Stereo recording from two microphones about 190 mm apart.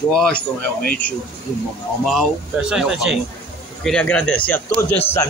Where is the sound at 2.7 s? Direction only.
5° right (ahead or behind).